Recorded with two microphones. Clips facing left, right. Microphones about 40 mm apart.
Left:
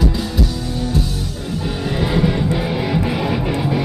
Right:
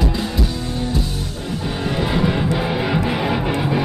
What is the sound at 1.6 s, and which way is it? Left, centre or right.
Music, centre.